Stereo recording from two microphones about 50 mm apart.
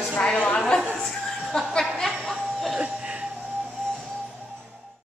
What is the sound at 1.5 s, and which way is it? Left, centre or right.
Chuckle, centre.